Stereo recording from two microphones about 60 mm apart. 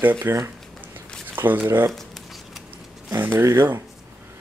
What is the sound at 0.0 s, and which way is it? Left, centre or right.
Speech, right.